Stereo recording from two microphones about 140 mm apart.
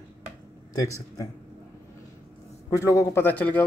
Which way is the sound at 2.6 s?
20° left (ahead or behind).